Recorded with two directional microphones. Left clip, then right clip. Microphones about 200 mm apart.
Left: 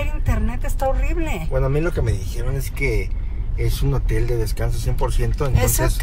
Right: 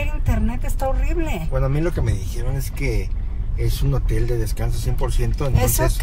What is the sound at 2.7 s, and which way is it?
Speech, 30° left (ahead or behind).